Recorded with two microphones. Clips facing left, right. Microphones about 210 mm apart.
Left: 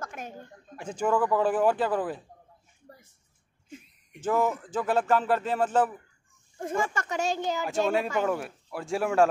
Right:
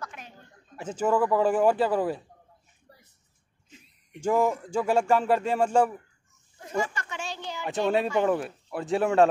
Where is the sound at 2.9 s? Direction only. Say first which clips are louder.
Left 5 dB; 50° left (ahead or behind).